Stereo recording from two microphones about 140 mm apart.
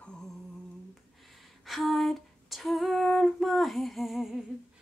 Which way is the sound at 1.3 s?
Centre (ahead or behind).